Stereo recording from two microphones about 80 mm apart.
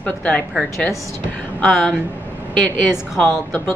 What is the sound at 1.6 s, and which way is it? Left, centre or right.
Speech, centre.